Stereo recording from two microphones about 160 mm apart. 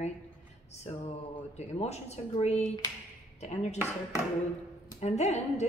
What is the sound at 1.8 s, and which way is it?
Speech, 40° left (ahead or behind).